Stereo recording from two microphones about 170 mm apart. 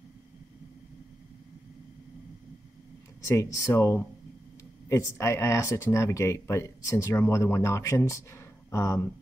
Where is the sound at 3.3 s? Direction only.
15° left (ahead or behind).